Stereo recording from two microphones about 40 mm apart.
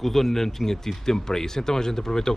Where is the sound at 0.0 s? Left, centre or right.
Centre.